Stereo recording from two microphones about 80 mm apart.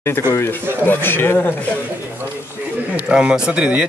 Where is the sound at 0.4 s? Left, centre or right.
Left.